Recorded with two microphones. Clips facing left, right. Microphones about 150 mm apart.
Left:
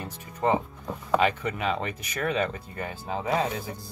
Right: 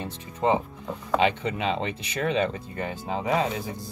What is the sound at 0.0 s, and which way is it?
Speech, 20° right (ahead or behind).